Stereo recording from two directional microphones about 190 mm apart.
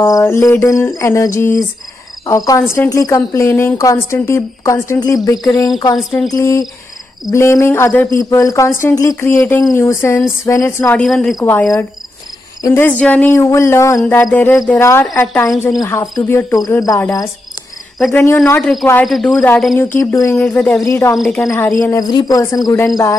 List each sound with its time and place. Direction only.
0.0 s speech: 15° left (ahead or behind)
5.9 s cricket: centre (ahead or behind)
6.3 s speech: 15° left (ahead or behind)
11.0 s cricket: centre (ahead or behind)
11.3 s speech: 10° left (ahead or behind)
18.5 s cricket: 5° left (ahead or behind)
19.8 s speech: 10° left (ahead or behind)
20.8 s speech: 15° left (ahead or behind)
21.2 s cricket: centre (ahead or behind)
21.5 s speech: 10° left (ahead or behind)